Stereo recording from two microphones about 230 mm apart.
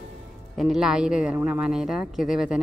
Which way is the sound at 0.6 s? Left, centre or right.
Centre.